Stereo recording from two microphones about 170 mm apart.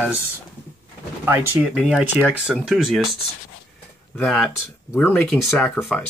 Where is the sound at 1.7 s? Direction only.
Centre (ahead or behind).